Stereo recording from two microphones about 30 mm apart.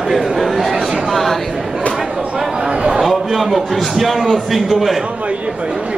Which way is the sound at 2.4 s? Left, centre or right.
Right.